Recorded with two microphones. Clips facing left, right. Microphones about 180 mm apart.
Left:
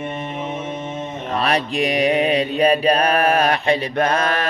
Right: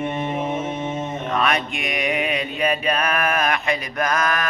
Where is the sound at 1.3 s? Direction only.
35° left (ahead or behind).